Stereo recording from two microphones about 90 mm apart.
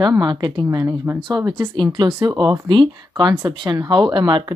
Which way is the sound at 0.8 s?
30° right (ahead or behind).